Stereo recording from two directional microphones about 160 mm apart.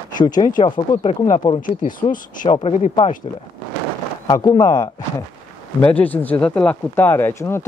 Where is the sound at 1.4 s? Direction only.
20° left (ahead or behind).